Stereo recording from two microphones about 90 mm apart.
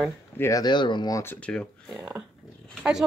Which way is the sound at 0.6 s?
60° left (ahead or behind).